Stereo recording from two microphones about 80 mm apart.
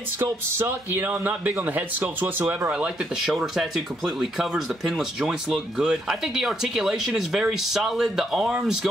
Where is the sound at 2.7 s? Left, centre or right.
Centre.